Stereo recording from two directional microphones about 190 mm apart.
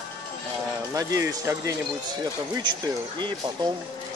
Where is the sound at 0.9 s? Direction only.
20° right (ahead or behind).